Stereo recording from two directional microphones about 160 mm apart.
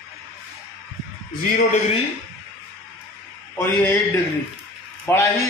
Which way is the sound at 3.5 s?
15° left (ahead or behind).